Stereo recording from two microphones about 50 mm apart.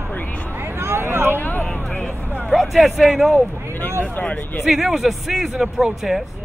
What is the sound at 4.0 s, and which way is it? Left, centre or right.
Speech, left.